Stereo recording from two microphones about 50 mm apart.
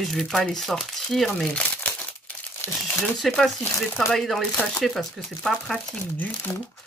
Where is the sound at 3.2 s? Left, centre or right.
Centre.